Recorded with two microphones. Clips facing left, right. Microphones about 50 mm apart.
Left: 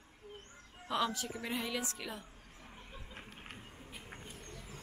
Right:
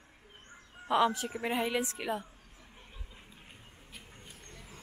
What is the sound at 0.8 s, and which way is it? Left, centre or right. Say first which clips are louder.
A woman's voice: right 7 dB; right.